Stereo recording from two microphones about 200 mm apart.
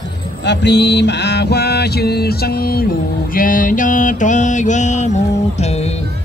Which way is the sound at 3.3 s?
45° left (ahead or behind).